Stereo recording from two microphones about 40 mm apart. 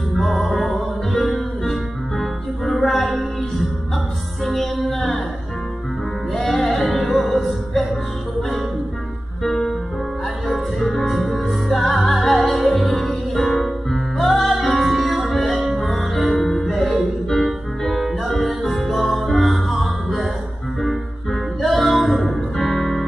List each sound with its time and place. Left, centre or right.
0.2 s music: centre
4.5 s music: centre
6.3 s music: centre
9.4 s keyboard: centre
10.5 s music: centre